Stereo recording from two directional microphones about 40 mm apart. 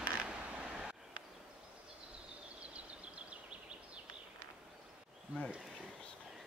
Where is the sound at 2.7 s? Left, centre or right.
Right.